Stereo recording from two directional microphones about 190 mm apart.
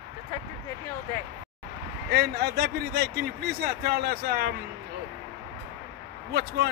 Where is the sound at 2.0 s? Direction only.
55° right (ahead or behind).